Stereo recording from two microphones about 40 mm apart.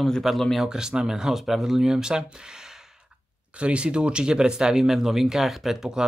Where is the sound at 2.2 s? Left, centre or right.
Centre.